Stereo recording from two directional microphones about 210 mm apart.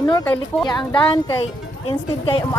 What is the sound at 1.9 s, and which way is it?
Speech, 25° left (ahead or behind).